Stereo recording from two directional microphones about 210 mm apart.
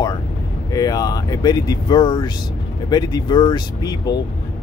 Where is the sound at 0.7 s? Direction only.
20° left (ahead or behind).